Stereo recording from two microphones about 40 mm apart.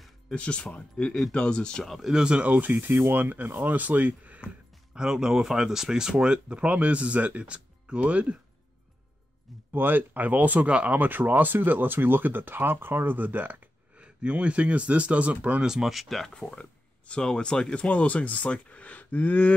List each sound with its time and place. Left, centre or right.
0.3 s speech: left
2.1 s speech: right
2.4 s speech: right
2.8 s speech: right
4.9 s speech: centre; by 8.4 s right
9.7 s speech: right
11.0 s speech: right
13.9 s speech: right
15.6 s speech: centre
16.3 s speech: centre
17.7 s speech: left